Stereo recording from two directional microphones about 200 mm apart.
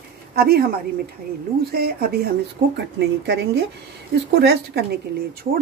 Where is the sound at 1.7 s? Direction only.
50° right (ahead or behind).